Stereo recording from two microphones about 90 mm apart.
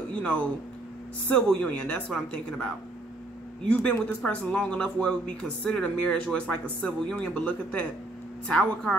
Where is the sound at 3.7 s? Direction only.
15° left (ahead or behind).